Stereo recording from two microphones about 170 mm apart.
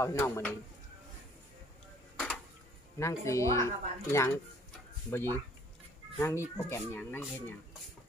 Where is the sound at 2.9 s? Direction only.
15° left (ahead or behind).